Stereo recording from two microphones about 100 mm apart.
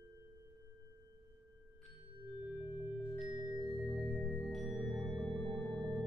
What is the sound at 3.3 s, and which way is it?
Music, 45° right (ahead or behind).